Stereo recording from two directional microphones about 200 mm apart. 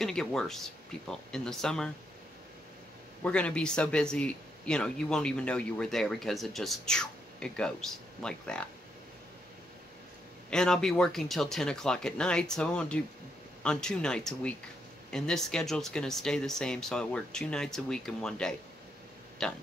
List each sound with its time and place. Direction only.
0.0 s speech: centre (ahead or behind)
3.3 s speech: 5° left (ahead or behind)
10.5 s speech: 5° left (ahead or behind)